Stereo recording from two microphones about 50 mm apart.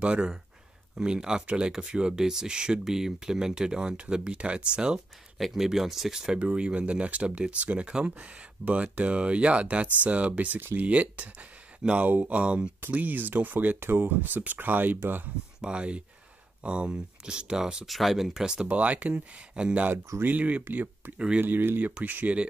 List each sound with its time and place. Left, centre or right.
0.0 s speech: right
5.4 s speech: centre
6.4 s speech: right
12.9 s speech: right
13.7 s speech: right
15.6 s speech: right
17.8 s speech: centre
18.4 s speech: centre
18.7 s speech: right
20.6 s speech: right